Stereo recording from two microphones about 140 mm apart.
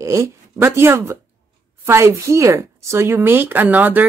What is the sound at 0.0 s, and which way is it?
Speech, 20° right (ahead or behind).